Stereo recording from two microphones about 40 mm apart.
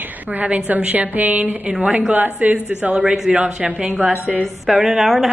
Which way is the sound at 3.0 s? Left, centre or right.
Centre.